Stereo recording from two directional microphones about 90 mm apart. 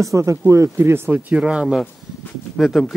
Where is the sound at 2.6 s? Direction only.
Centre (ahead or behind).